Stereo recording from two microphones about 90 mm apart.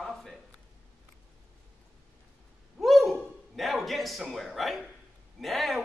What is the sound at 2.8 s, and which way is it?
A man's voice, centre (ahead or behind).